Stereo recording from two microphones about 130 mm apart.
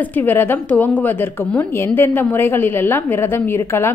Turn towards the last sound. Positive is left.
turn(degrees=20)  # may be behind; listen again after turning